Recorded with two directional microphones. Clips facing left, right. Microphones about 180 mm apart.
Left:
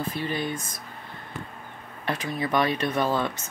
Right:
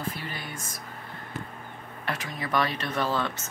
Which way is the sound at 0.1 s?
20° left (ahead or behind).